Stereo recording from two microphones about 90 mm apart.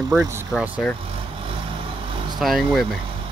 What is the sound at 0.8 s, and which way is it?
Speech, 10° left (ahead or behind).